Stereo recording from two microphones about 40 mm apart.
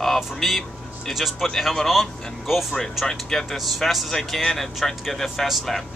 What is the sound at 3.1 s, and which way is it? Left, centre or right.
Speech, centre.